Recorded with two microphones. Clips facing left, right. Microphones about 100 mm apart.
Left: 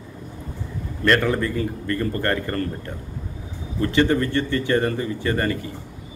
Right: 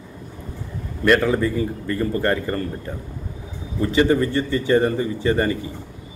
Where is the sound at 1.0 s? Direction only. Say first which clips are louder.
Right 3 dB; 15° right (ahead or behind).